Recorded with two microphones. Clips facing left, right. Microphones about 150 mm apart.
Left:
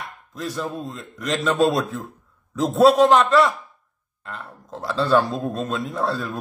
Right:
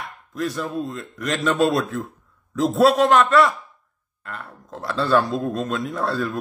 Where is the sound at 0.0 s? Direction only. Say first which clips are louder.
Right 4 dB; centre (ahead or behind).